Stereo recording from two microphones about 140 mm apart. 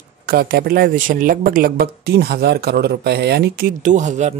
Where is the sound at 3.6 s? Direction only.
65° right (ahead or behind).